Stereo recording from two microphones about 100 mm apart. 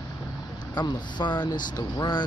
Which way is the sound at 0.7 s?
45° left (ahead or behind).